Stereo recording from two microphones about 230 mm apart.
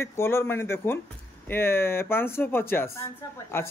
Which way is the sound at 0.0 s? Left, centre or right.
Centre.